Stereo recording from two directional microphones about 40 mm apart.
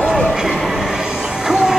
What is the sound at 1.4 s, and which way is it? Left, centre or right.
Train, centre.